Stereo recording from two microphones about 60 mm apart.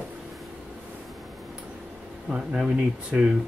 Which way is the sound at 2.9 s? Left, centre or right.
Centre.